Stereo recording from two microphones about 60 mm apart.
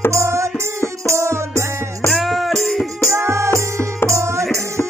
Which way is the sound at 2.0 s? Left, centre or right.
Centre.